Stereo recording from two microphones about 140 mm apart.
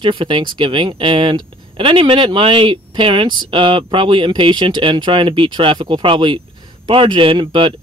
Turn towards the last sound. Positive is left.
turn(degrees=-35)  # may be behind; listen again after turning